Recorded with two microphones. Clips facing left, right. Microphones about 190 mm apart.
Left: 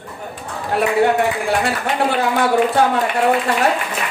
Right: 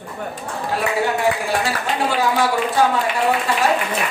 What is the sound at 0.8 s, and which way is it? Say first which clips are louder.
Speech: left 6 dB; 60° left (ahead or behind).